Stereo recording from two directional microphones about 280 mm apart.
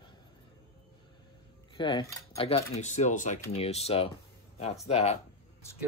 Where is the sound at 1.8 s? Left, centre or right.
Centre.